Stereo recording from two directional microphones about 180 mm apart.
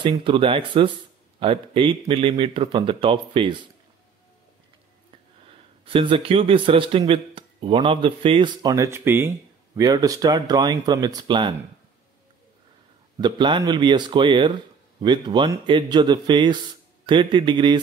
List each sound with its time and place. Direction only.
0.0 s speech: 30° right (ahead or behind)
5.9 s speech: 30° right (ahead or behind)
13.2 s speech: 25° right (ahead or behind)